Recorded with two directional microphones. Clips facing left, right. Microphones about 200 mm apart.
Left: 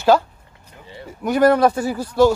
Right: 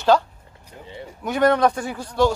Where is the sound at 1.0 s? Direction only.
5° left (ahead or behind).